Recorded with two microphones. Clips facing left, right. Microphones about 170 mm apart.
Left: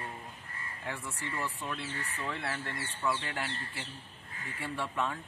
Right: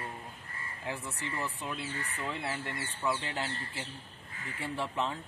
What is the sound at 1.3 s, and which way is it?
Speech, 15° right (ahead or behind).